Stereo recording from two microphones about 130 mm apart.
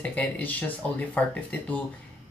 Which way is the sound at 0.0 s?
10° left (ahead or behind).